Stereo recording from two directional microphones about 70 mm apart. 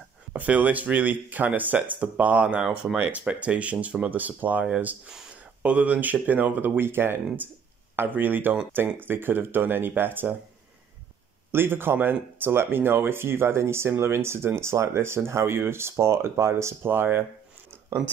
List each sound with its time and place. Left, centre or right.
0.3 s speech: right
11.5 s speech: right